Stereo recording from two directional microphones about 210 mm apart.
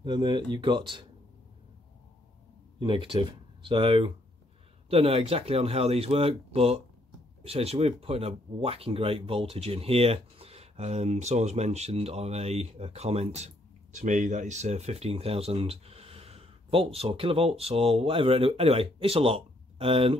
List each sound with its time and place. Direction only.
0.0 s speech: 20° right (ahead or behind)
2.8 s speech: 25° right (ahead or behind)